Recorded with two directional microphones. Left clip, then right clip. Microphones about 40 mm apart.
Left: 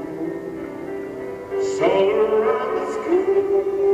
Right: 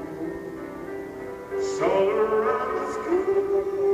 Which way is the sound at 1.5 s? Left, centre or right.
Left.